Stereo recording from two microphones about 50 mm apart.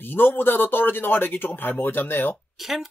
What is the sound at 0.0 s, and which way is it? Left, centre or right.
Speech, left.